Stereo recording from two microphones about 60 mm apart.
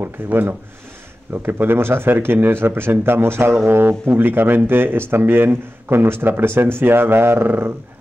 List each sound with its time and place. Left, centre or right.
0.0 s speech: right